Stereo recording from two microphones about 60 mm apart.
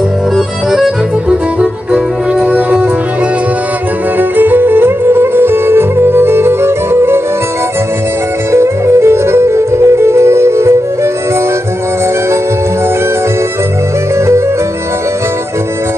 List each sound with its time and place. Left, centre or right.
0.7 s music: centre
2.4 s music: right
4.2 s music: right
8.5 s music: right